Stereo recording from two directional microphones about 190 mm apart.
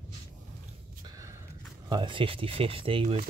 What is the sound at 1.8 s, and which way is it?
Speech, 25° right (ahead or behind).